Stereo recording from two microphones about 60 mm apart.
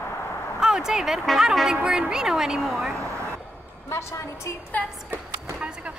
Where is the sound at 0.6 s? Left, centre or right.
Centre.